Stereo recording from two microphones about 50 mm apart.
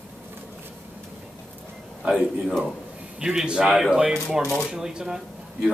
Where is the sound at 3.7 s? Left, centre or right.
Centre.